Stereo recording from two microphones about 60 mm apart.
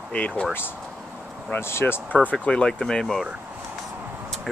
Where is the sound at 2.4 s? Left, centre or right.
Centre.